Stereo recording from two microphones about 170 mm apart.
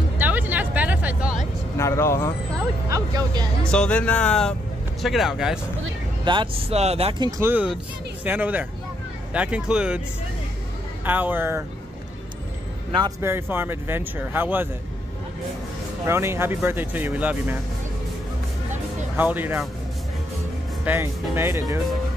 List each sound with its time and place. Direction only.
0.2 s a sound: 10° right (ahead or behind)
1.8 s speech: 15° left (ahead or behind)
2.9 s speech: 20° right (ahead or behind)
3.6 s speech: 5° left (ahead or behind)
6.2 s speech: 30° right (ahead or behind)
7.2 s speech: 15° right (ahead or behind)
11.1 s speech: 10° right (ahead or behind)
13.0 s speech: 15° right (ahead or behind)
16.1 s speech: 15° right (ahead or behind)
19.1 s speech: 10° right (ahead or behind)
20.8 s speech: 10° right (ahead or behind)